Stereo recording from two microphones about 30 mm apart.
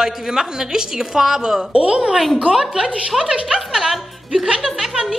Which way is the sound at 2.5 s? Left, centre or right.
Centre.